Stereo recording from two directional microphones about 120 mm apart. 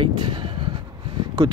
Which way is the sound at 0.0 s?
45° right (ahead or behind).